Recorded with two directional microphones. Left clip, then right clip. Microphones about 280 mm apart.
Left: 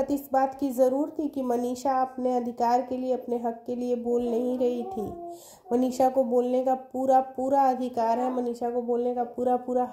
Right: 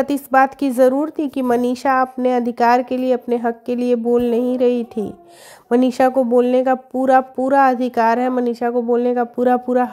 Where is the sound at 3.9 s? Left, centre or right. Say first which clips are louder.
Right 10 dB; right.